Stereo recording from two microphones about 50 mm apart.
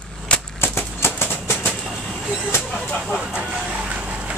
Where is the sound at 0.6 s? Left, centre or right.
Left.